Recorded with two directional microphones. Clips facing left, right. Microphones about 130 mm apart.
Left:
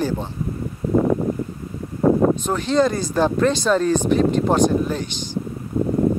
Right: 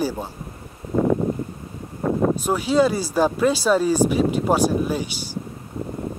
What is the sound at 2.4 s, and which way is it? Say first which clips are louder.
Speech: even; 10° right (ahead or behind).